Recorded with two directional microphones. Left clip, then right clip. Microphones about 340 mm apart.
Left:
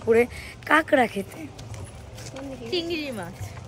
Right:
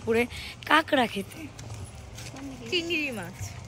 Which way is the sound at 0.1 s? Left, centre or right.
Centre.